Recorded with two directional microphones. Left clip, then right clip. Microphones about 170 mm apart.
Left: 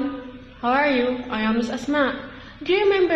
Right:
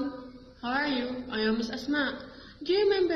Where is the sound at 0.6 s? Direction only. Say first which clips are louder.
Left 10 dB; 40° left (ahead or behind).